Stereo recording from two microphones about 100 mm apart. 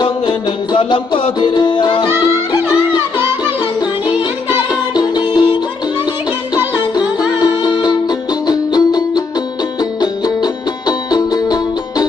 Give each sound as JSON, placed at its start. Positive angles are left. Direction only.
{"t": 0.0, "sound": "music", "side_deg": 55}
{"t": 4.9, "sound": "music", "side_deg": 45}
{"t": 7.3, "sound": "music", "side_deg": 40}